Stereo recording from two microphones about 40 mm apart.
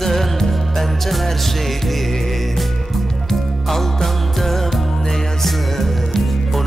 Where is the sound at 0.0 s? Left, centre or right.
Centre.